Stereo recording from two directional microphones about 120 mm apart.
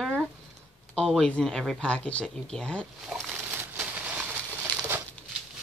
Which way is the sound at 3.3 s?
15° right (ahead or behind).